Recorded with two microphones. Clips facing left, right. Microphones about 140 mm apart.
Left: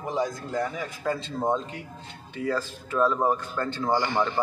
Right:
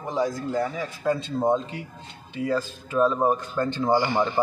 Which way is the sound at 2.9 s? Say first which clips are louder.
Right 2 dB; 20° right (ahead or behind).